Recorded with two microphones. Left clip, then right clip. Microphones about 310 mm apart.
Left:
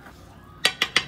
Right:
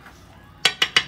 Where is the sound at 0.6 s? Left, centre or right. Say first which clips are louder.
Right 3 dB; centre.